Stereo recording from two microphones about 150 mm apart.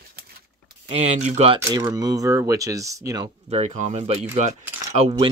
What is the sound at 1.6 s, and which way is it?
Speech, 25° right (ahead or behind).